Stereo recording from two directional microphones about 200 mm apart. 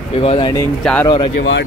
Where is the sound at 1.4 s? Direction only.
60° left (ahead or behind).